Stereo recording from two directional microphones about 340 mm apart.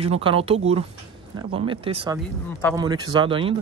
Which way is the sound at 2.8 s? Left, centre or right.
Centre.